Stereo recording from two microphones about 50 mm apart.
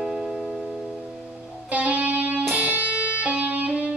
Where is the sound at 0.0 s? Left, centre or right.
Centre.